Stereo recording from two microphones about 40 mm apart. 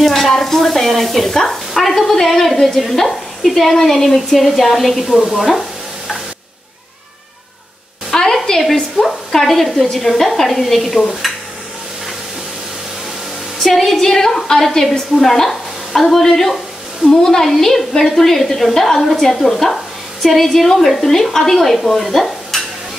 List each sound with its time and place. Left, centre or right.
0.0 s a woman's voice: centre
5.0 s speech: centre
5.4 s frying: centre
8.1 s sizzle: centre
8.9 s a woman's voice: centre
11.2 s a sound: centre
13.6 s a woman's voice: centre
17.4 s a woman's voice: centre